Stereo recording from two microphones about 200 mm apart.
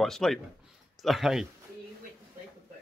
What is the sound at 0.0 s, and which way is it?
Speech, centre (ahead or behind).